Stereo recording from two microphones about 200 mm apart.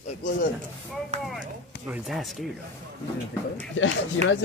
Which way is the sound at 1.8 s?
5° right (ahead or behind).